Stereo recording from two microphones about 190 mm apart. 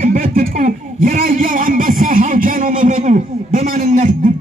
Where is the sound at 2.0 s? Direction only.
45° right (ahead or behind).